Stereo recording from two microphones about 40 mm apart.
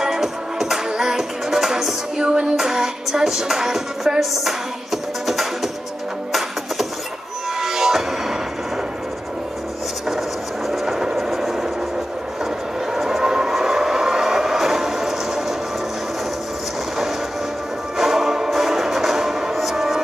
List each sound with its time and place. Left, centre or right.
0.0 s music: centre
7.6 s music: centre
10.7 s vehicle: centre
11.2 s a sound: centre
12.9 s train: centre
17.9 s music: centre